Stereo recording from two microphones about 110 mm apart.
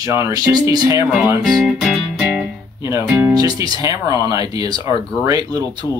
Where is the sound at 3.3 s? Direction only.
35° right (ahead or behind).